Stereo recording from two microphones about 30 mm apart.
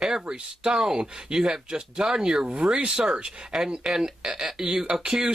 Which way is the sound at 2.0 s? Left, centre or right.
Centre.